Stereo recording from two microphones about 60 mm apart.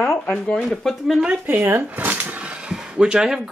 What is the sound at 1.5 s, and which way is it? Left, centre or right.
Speech, right.